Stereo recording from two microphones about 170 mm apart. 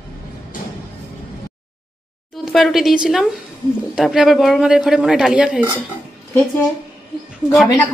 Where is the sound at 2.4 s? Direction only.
Centre (ahead or behind).